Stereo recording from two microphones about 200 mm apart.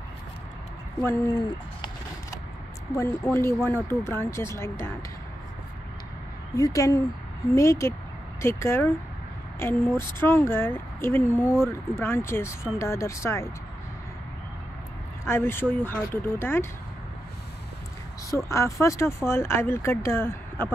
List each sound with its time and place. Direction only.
1.0 s speech: 15° left (ahead or behind)
2.9 s speech: 15° left (ahead or behind)
6.5 s speech: 15° left (ahead or behind)
15.2 s speech: 10° left (ahead or behind)
18.3 s speech: 15° left (ahead or behind)